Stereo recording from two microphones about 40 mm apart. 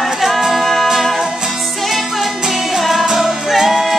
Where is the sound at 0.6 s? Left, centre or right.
Centre.